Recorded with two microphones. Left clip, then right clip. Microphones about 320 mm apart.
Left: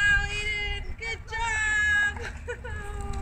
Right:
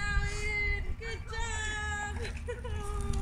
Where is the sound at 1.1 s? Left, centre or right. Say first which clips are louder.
Left 10 dB; left.